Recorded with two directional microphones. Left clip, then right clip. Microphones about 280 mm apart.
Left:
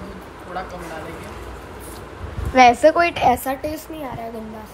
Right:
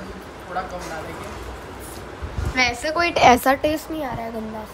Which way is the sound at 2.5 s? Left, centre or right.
Centre.